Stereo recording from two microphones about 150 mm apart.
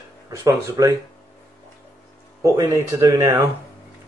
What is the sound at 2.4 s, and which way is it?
Speech, 20° right (ahead or behind).